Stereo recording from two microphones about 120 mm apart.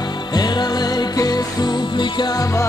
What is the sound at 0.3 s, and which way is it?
Music, 35° left (ahead or behind).